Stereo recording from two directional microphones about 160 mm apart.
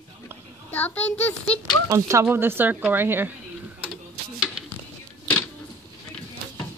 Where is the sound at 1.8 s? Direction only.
20° right (ahead or behind).